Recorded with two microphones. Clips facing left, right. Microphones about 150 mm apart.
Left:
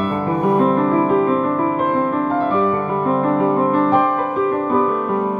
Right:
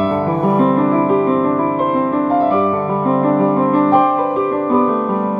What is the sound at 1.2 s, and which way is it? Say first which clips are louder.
Music: right 2 dB; 35° right (ahead or behind).